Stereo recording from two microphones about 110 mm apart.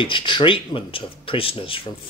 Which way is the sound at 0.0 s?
45° left (ahead or behind).